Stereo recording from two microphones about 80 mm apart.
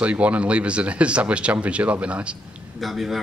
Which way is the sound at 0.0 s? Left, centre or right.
Centre.